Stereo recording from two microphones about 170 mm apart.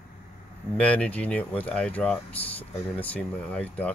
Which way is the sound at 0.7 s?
5° left (ahead or behind).